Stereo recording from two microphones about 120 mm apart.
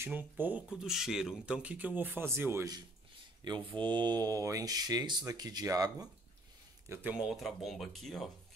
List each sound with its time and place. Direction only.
0.0 s speech: 15° right (ahead or behind)
3.4 s speech: 35° right (ahead or behind)
6.9 s speech: 15° right (ahead or behind)
7.2 s speech: centre (ahead or behind)